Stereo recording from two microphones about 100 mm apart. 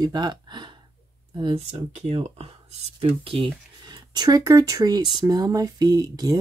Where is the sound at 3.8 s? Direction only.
45° right (ahead or behind).